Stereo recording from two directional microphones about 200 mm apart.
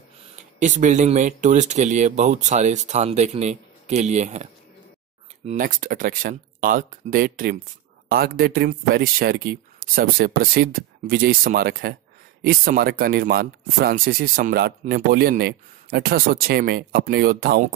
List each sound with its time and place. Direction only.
0.4 s speech: 35° right (ahead or behind)